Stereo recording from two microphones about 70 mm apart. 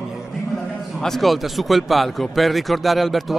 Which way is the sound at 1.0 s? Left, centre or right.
Centre.